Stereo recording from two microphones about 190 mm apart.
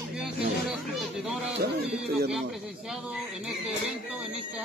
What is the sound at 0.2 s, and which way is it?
Chatter, 5° right (ahead or behind).